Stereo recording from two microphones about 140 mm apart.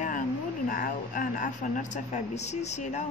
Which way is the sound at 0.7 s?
85° left.